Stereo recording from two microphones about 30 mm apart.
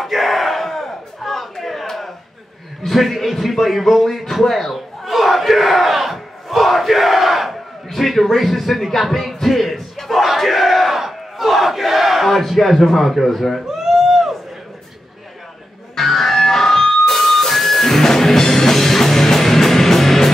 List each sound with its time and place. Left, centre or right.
0.0 s battle cry: centre
2.9 s a man's voice: centre
3.5 s a sound: centre
9.3 s music: centre
10.2 s crowd: centre
13.7 s a sound: centre
16.0 s music: centre